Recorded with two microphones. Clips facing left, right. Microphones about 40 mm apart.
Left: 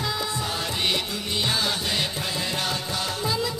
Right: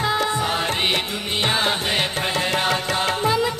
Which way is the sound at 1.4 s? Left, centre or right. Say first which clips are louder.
Right 6 dB; right.